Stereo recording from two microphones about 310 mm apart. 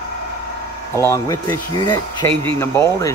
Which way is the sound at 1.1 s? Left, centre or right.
Centre.